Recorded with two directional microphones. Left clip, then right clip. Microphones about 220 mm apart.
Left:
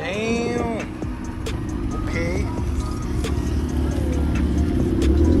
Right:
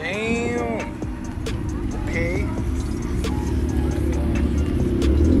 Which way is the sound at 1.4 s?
Centre (ahead or behind).